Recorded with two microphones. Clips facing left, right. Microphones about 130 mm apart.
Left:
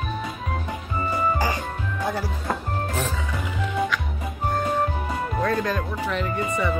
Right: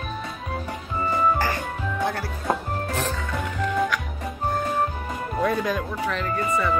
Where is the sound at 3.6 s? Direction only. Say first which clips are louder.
Right 1 dB; centre (ahead or behind).